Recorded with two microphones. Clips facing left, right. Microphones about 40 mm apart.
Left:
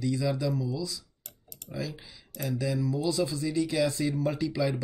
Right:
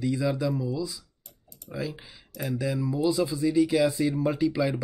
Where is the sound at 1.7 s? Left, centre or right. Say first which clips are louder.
Right 3 dB; right.